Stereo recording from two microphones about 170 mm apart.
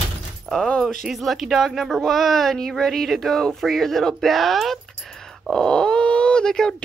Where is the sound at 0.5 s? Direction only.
5° left (ahead or behind).